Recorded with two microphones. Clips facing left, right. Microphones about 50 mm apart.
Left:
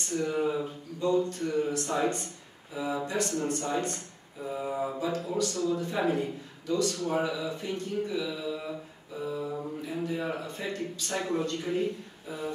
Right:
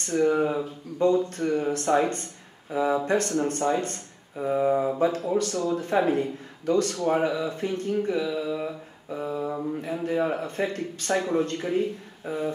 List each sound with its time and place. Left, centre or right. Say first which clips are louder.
0.1 s speech: right 6 dB; right
8.3 s mantra: right 6 dB; right
9.1 s speech: right 4 dB; right
11.1 s mantra: right 5 dB; centre
12.3 s speech: right 7 dB; right